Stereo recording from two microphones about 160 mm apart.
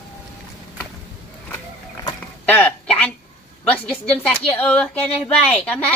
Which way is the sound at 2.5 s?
10° left (ahead or behind).